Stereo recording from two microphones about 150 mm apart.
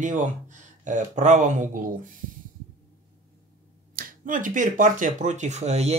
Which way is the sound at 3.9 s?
65° right (ahead or behind).